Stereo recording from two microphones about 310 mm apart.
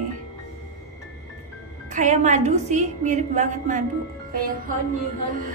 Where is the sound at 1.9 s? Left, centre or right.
Right.